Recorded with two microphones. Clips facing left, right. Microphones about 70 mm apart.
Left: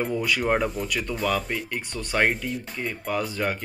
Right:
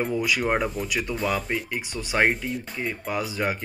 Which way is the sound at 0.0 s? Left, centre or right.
Centre.